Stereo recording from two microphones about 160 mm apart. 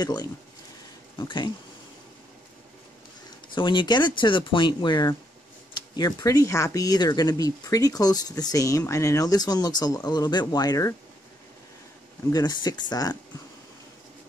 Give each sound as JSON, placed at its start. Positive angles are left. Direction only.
{"t": 0.0, "sound": "speech", "side_deg": 25}
{"t": 3.5, "sound": "speech", "side_deg": 30}
{"t": 12.3, "sound": "speech", "side_deg": 25}